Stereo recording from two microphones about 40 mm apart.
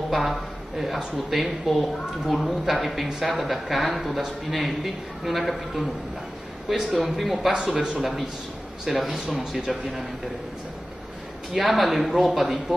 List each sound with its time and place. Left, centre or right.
0.1 s a man's voice: centre
7.5 s speech: centre
8.8 s a man's voice: centre
11.5 s a man's voice: centre